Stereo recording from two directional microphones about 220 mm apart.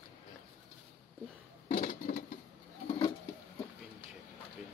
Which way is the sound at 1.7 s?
40° left (ahead or behind).